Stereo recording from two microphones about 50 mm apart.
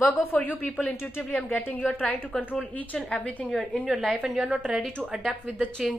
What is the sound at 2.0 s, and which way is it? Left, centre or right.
A woman's voice, left.